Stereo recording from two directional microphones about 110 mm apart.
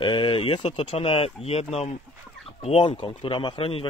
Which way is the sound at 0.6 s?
80° left.